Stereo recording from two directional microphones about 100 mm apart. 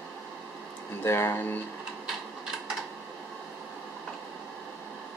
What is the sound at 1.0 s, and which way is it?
Speech, 25° left (ahead or behind).